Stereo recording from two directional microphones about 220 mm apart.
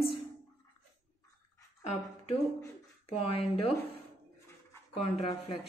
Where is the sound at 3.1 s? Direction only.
25° left (ahead or behind).